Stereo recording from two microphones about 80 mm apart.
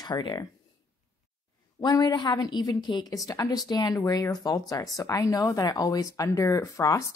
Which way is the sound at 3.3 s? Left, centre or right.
Left.